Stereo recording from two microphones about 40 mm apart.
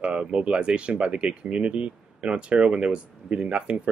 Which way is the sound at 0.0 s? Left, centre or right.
Right.